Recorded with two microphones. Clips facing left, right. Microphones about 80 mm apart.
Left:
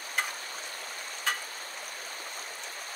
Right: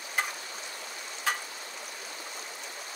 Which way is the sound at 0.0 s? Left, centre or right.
Left.